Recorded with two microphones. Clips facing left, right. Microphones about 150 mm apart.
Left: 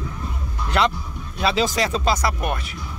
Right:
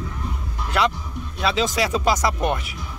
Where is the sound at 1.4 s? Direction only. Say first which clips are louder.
Left 1 dB; centre (ahead or behind); by 2.5 s 20° right (ahead or behind).